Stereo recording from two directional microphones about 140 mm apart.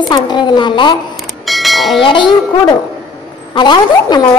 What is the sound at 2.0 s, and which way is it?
A child's voice, 35° left (ahead or behind).